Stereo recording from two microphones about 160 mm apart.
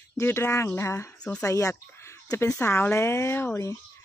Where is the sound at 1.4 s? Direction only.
20° left (ahead or behind).